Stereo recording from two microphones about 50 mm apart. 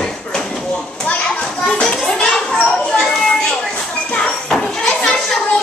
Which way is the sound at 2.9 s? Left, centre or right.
Centre.